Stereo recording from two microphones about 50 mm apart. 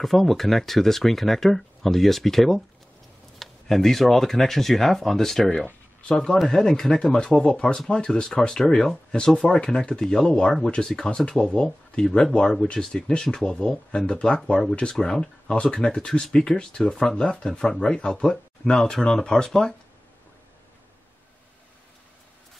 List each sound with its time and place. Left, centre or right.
0.0 s speech: centre